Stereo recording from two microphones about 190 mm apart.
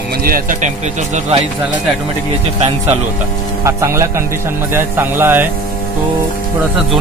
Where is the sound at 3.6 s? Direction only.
15° right (ahead or behind).